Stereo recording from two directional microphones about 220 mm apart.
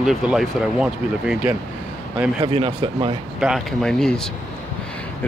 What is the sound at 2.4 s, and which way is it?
Speech, 25° right (ahead or behind).